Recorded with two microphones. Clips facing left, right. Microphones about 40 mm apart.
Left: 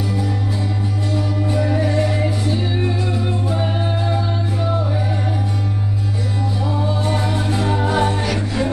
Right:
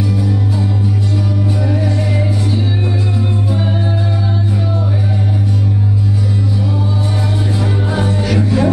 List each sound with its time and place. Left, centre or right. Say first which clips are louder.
7.5 s music: left 3 dB; left
8.3 s music: right 6 dB; centre